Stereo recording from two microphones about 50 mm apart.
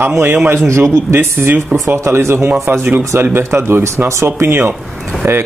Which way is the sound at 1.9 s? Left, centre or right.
Right.